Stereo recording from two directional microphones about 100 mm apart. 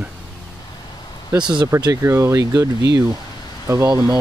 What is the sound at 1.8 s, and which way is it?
Speech, 30° right (ahead or behind).